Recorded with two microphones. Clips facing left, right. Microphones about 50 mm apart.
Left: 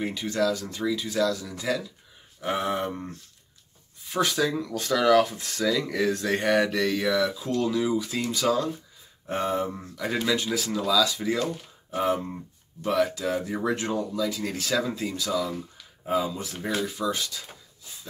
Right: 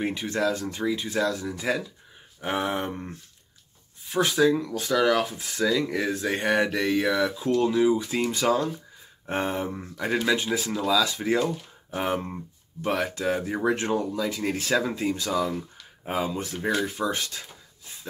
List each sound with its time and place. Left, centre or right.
0.3 s speech: right
2.4 s speech: centre
4.1 s speech: centre
11.0 s speech: right
13.5 s speech: right
13.7 s speech: right